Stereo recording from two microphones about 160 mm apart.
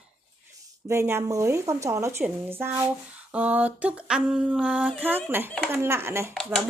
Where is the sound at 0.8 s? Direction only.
15° right (ahead or behind).